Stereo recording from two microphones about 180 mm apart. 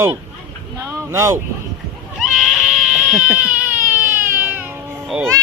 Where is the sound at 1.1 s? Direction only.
15° right (ahead or behind).